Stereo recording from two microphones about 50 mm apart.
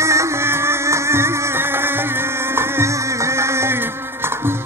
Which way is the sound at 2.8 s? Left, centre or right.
Right.